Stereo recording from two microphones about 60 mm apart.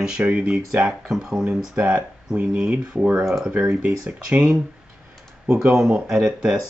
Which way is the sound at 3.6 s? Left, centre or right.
Centre.